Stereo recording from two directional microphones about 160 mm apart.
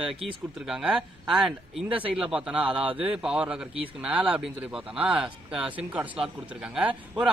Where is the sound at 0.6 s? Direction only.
5° right (ahead or behind).